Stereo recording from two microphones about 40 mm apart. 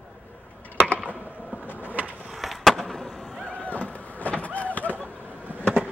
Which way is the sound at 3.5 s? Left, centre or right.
Left.